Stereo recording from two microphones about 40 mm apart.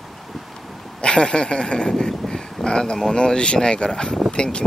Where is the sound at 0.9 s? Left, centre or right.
Left.